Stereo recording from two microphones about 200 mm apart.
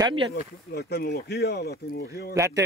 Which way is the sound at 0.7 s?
55° left (ahead or behind).